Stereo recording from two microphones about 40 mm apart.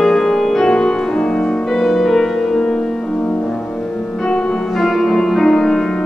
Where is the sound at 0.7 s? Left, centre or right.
Centre.